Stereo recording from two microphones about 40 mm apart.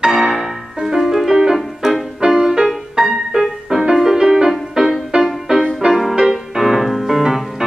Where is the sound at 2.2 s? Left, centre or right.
Centre.